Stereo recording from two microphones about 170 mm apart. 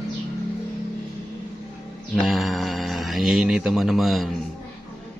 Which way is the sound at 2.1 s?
Centre (ahead or behind).